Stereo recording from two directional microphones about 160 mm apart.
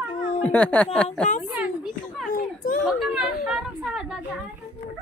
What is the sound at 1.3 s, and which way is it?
Speech, 50° left (ahead or behind).